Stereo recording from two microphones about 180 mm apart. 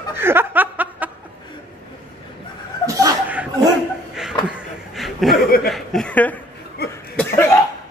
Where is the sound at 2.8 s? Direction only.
15° right (ahead or behind).